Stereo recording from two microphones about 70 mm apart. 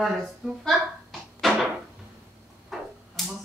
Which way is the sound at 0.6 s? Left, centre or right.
Centre.